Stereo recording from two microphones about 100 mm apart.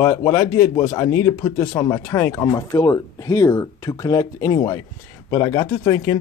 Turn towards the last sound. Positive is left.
turn(degrees=35)  # may be behind; listen again after turning